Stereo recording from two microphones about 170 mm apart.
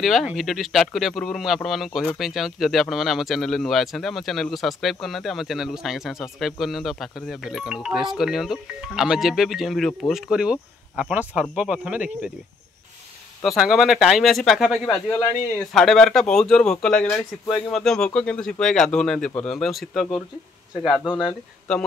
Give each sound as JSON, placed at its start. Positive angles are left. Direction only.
{"t": 0.0, "sound": "speech", "side_deg": 0}
{"t": 13.4, "sound": "speech", "side_deg": 0}
{"t": 20.8, "sound": "speech", "side_deg": 25}